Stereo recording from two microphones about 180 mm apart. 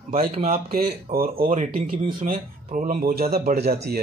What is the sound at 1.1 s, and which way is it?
Speech, 55° right (ahead or behind).